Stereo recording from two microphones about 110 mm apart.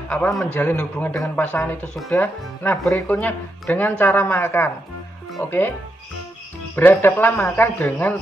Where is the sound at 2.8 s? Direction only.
5° left (ahead or behind).